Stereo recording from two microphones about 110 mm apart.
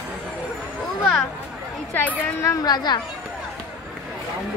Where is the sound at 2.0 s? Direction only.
15° left (ahead or behind).